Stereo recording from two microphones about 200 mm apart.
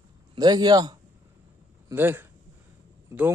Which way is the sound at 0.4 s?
20° right (ahead or behind).